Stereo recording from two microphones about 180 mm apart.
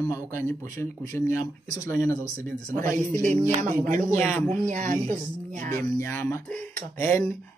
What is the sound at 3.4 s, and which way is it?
Speech, 45° right (ahead or behind).